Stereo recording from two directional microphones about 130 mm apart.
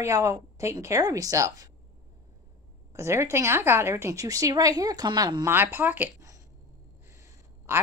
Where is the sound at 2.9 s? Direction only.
20° right (ahead or behind).